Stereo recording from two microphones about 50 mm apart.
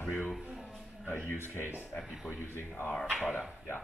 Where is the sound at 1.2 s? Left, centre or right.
Left.